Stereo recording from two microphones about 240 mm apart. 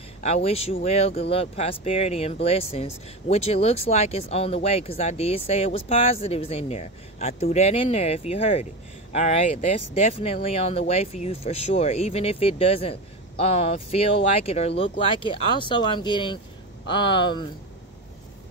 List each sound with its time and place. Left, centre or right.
0.2 s speech: left
10.2 s speech: left